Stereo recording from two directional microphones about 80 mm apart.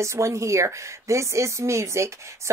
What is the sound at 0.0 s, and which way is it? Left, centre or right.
Speech, right.